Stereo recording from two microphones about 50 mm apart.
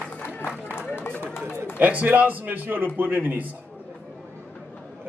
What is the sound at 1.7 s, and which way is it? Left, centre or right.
A man's voice, right.